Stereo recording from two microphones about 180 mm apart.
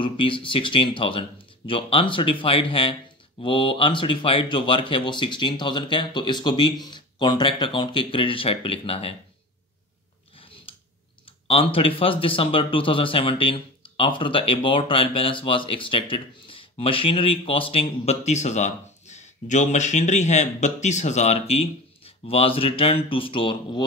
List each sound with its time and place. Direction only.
0.0 s speech: 30° left (ahead or behind)
11.4 s speech: 30° left (ahead or behind)